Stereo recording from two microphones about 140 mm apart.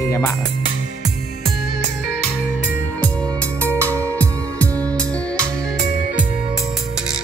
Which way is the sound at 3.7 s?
20° right (ahead or behind).